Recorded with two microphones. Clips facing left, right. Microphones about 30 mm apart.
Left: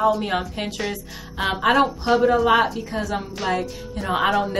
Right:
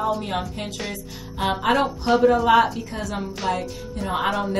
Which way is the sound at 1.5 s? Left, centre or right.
Centre.